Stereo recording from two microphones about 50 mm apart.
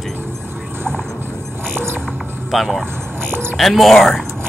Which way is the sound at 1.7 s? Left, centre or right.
Right.